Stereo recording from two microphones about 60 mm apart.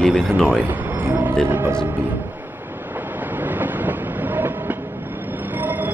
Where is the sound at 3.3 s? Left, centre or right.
Right.